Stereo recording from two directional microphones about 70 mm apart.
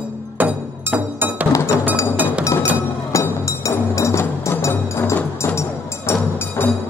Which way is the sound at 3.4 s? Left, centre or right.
Left.